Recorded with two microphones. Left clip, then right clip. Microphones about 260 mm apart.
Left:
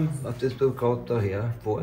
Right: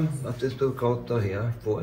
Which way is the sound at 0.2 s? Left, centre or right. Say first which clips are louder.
Left 3 dB; left.